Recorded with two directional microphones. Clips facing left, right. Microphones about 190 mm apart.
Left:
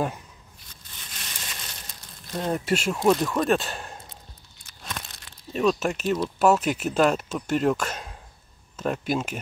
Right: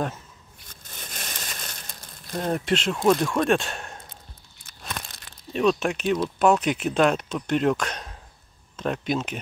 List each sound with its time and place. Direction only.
0.7 s a sound: 50° right (ahead or behind)
2.5 s speech: 10° left (ahead or behind)
5.5 s speech: 5° left (ahead or behind)